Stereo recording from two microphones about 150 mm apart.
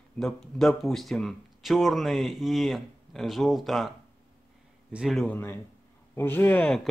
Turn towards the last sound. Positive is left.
turn(degrees=5)  # may be behind; listen again after turning